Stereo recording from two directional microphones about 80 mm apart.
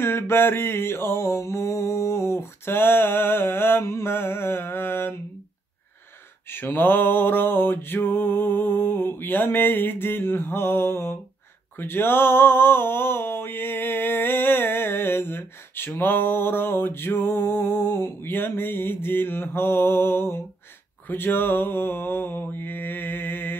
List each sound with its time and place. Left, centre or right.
0.0 s mantra: left
6.5 s music: left
11.8 s a sound: left
21.1 s mantra: left